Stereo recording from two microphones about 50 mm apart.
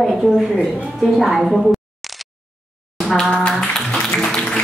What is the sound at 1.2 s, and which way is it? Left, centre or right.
Speech, centre.